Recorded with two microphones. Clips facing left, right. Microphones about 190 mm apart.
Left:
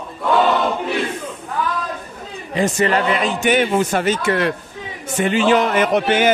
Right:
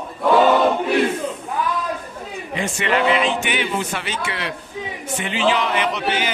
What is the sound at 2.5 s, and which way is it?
A man's voice, 40° left (ahead or behind).